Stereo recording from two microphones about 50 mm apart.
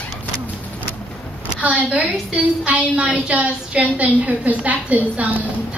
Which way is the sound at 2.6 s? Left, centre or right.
Right.